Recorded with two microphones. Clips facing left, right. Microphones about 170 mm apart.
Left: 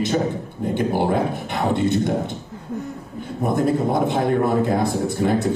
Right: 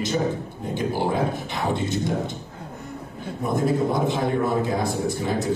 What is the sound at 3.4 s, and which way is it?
A man's voice, 55° left (ahead or behind).